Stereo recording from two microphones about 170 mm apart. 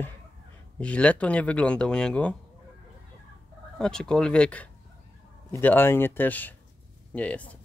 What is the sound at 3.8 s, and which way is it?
Speech, 5° left (ahead or behind).